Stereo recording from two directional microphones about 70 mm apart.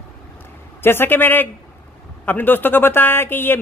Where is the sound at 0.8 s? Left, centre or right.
Left.